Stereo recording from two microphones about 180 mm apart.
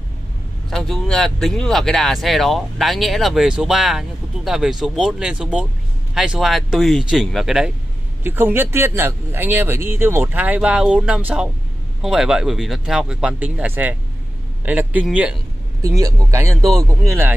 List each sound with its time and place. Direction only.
0.7 s speech: centre (ahead or behind)
16.0 s speech: 15° right (ahead or behind)